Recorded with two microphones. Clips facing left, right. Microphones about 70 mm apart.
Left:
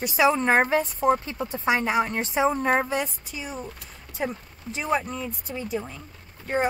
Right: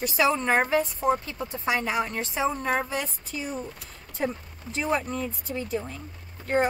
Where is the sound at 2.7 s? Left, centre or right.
Left.